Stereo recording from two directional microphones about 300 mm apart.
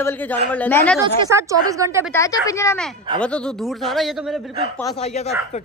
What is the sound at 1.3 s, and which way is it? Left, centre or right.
Speech, centre.